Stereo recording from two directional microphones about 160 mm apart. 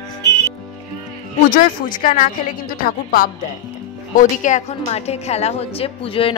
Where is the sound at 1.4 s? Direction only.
60° left (ahead or behind).